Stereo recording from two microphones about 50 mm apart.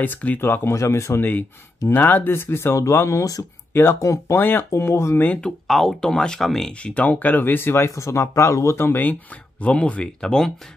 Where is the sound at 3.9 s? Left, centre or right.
Left.